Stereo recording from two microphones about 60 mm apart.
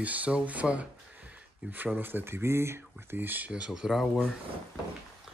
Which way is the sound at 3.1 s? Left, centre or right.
Right.